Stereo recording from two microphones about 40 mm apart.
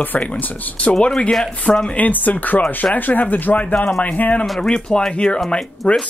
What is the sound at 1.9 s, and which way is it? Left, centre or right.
Speech, left.